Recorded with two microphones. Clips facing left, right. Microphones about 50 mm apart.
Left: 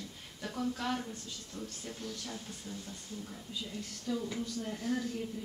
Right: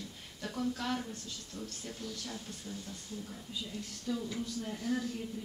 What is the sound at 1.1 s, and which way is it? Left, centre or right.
Speech, left.